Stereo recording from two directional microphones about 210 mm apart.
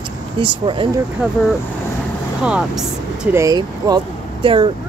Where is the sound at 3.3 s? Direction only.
15° right (ahead or behind).